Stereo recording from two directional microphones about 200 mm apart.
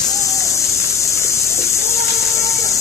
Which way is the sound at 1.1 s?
15° left (ahead or behind).